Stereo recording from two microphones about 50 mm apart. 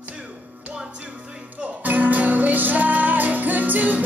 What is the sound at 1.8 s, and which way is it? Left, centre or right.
Music, right.